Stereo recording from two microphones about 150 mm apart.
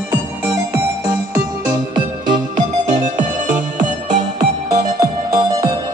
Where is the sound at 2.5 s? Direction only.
55° right (ahead or behind).